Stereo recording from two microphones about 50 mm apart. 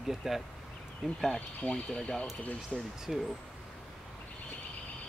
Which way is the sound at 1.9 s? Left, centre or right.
Centre.